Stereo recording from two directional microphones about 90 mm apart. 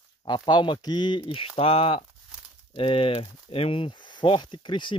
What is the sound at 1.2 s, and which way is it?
Speech, 90° left.